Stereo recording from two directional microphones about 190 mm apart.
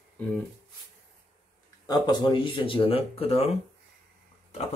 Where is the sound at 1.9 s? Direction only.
25° left (ahead or behind).